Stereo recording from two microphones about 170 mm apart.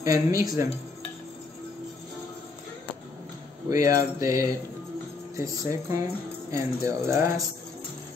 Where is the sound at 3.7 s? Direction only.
20° right (ahead or behind).